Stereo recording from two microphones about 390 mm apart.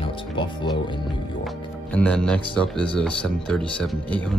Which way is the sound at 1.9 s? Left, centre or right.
Centre.